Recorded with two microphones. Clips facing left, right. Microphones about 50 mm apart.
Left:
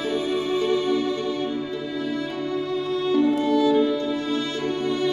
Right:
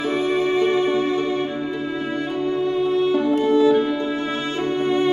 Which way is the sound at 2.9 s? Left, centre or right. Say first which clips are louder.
Left 1 dB; right.